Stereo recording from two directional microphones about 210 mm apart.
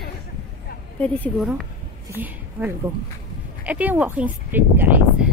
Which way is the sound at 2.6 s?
10° right (ahead or behind).